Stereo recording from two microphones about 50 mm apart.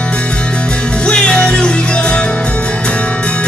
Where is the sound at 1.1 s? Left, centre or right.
Centre.